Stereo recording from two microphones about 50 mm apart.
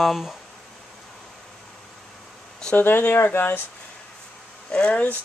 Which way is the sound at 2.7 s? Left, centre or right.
Left.